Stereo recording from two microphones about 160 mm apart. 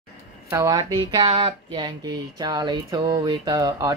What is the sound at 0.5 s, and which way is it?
Speech, 20° right (ahead or behind).